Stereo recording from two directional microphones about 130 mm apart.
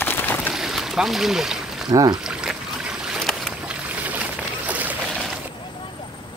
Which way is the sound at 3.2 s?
5° left (ahead or behind).